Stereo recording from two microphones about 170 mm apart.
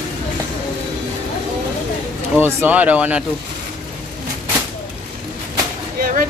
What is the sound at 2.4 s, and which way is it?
Speech, 10° right (ahead or behind).